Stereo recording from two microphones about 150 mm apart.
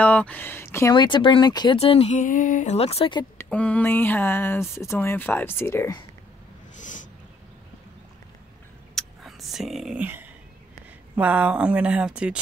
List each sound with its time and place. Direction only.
0.0 s a sound: 10° left (ahead or behind)
0.9 s speech: 30° left (ahead or behind)
1.8 s speech: 40° left (ahead or behind)
2.1 s speech: 60° left (ahead or behind); by 3.3 s 35° left (ahead or behind)
3.4 s speech: 10° left (ahead or behind)
6.8 s owl: 55° left (ahead or behind)
8.9 s a sound: centre (ahead or behind)
11.1 s speech: 10° right (ahead or behind)